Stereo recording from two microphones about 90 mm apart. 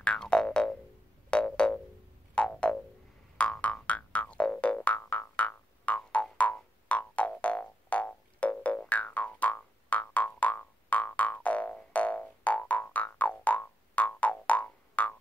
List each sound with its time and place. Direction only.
0.0 s music: 10° left (ahead or behind)